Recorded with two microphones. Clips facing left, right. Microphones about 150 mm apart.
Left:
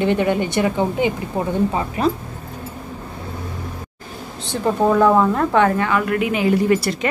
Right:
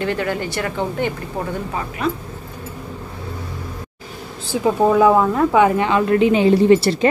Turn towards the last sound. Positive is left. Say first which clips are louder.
# right 4 dB
turn(degrees=-30)  # may be behind; listen again after turning